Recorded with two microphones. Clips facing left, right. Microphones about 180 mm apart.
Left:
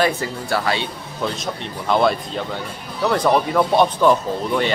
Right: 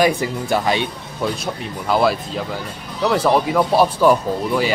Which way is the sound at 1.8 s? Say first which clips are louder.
Even; 5° right (ahead or behind).